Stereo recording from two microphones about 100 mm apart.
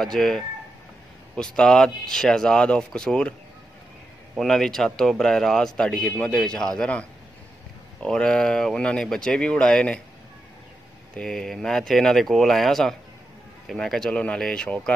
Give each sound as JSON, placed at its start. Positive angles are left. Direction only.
{"t": 0.0, "sound": "a man's voice", "side_deg": 5}
{"t": 4.4, "sound": "a man's voice", "side_deg": 5}
{"t": 11.1, "sound": "a man's voice", "side_deg": 5}